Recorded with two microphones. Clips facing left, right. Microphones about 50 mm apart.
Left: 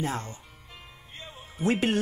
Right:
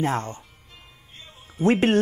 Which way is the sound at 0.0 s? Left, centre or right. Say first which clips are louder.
Right 6 dB; right.